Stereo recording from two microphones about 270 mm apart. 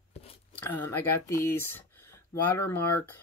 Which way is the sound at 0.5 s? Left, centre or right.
Centre.